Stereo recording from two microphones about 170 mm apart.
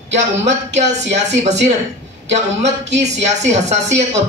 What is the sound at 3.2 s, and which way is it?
Speech, 40° right (ahead or behind).